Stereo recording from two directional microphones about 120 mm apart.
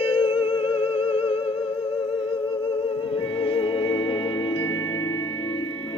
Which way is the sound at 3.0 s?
45° left (ahead or behind).